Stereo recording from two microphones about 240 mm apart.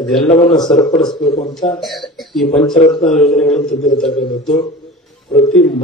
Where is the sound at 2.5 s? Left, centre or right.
Left.